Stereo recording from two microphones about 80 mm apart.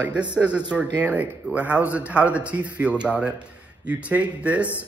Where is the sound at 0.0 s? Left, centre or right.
Centre.